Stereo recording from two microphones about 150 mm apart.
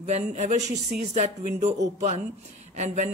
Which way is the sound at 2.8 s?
50° right (ahead or behind).